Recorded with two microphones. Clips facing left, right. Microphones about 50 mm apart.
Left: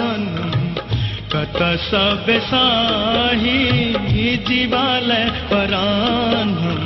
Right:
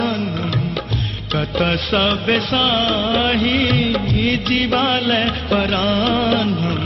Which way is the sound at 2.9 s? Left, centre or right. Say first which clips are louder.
Even; left.